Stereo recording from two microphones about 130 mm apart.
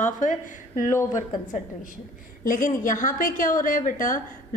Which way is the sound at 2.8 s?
90° left.